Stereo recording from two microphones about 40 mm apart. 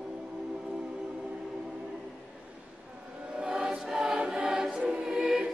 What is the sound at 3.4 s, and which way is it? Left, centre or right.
Choir, right.